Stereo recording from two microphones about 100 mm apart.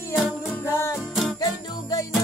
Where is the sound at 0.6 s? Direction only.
30° left (ahead or behind).